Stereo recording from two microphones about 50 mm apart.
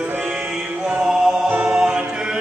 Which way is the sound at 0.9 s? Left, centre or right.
Centre.